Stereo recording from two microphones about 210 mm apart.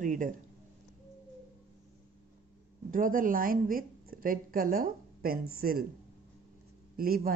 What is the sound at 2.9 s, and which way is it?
A woman's voice, 40° right (ahead or behind).